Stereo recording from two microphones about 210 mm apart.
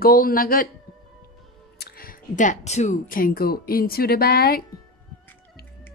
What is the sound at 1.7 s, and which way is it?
A woman's voice, 45° left (ahead or behind).